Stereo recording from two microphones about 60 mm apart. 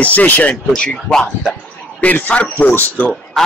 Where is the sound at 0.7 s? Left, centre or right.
Centre.